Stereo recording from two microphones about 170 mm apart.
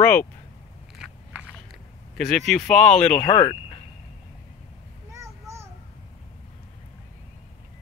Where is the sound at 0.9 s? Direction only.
Centre (ahead or behind).